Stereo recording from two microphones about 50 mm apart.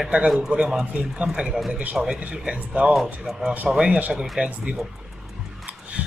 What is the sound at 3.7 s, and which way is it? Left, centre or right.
Speech, right.